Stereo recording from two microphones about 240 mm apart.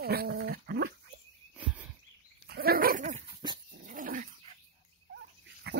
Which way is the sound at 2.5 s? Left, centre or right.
Right.